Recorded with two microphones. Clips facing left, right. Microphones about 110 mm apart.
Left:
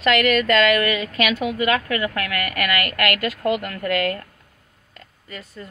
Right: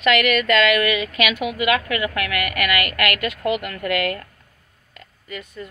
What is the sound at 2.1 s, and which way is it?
Speech, 35° left (ahead or behind).